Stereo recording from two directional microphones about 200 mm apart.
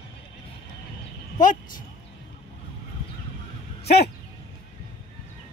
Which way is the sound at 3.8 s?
55° left (ahead or behind).